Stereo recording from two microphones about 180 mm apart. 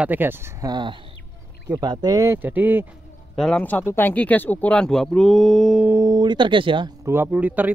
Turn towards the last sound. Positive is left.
turn(degrees=-10)  # may be behind; listen again after turning